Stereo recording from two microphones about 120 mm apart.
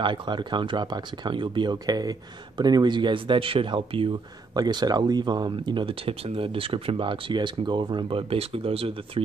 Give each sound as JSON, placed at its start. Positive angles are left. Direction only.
{"t": 0.0, "sound": "speech", "side_deg": -45}
{"t": 4.6, "sound": "speech", "side_deg": -35}